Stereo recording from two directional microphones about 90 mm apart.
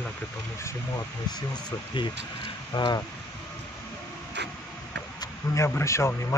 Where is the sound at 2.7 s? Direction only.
55° left (ahead or behind).